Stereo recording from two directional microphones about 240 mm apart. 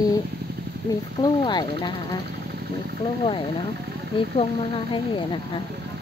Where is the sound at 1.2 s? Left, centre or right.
Centre.